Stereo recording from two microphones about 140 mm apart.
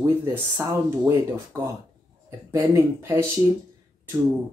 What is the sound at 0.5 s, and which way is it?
Speech, 20° right (ahead or behind).